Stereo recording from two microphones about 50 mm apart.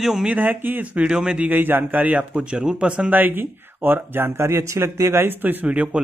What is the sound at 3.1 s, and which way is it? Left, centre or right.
Speech, right.